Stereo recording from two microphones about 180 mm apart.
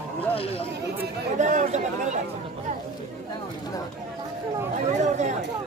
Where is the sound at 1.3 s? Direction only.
40° right (ahead or behind).